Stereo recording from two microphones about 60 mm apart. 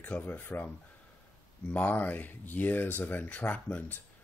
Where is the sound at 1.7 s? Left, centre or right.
Left.